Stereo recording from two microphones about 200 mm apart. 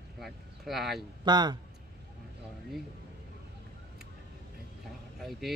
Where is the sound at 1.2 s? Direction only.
20° right (ahead or behind).